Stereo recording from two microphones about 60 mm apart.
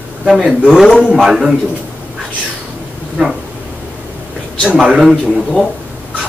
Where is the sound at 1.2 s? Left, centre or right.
Centre.